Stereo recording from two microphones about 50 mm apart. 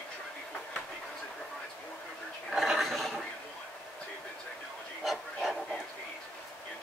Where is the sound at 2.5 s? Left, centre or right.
Centre.